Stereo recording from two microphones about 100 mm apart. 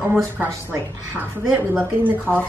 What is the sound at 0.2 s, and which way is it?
Speech, 30° right (ahead or behind).